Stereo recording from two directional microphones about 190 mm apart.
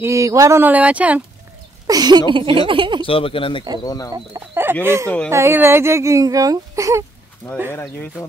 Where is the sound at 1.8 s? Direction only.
20° right (ahead or behind).